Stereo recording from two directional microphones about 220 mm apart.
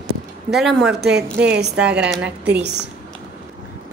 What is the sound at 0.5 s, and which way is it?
Speech, centre (ahead or behind).